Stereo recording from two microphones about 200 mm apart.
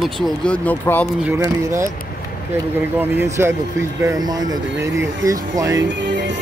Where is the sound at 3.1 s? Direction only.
10° right (ahead or behind).